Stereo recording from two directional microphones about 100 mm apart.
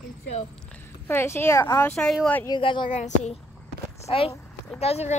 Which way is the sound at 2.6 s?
55° left (ahead or behind).